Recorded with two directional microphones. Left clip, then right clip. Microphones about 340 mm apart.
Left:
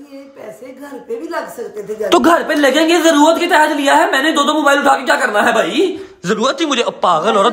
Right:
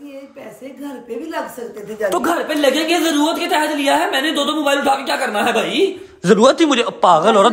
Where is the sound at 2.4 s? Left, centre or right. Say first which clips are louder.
Left 4 dB; centre.